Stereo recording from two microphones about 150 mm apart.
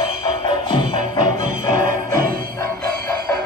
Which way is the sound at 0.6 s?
30° left (ahead or behind).